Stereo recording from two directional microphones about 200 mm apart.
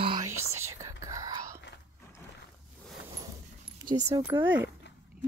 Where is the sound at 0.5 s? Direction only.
15° right (ahead or behind).